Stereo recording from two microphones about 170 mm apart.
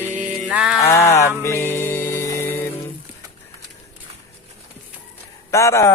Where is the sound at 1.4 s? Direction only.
15° left (ahead or behind).